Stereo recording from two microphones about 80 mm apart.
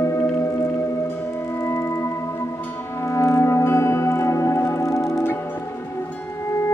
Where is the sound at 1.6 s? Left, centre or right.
Left.